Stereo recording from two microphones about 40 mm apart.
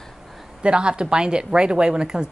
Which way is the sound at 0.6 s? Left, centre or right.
Right.